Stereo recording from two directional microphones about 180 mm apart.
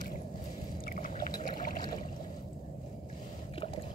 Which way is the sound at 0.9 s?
50° left (ahead or behind).